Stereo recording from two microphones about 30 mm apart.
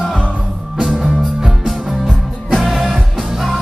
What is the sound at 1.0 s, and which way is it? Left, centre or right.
Music, centre.